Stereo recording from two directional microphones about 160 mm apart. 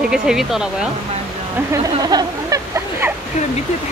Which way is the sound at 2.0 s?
20° right (ahead or behind).